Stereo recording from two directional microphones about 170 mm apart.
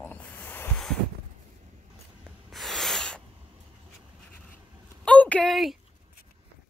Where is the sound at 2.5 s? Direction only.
Centre (ahead or behind).